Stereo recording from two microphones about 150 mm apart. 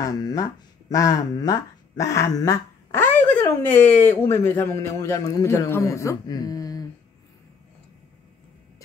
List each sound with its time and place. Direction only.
0.0 s a man's voice: 25° left (ahead or behind)